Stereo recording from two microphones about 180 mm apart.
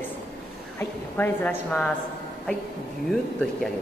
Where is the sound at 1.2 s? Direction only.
10° left (ahead or behind).